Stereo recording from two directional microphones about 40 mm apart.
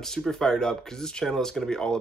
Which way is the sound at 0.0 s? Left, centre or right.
Centre.